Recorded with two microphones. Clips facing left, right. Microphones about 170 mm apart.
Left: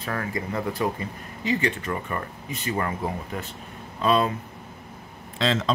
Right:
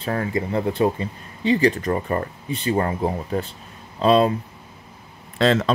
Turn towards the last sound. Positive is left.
turn(degrees=-60)  # may be behind; listen again after turning